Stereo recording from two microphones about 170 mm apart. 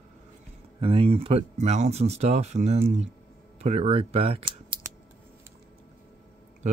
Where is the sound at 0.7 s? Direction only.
30° right (ahead or behind).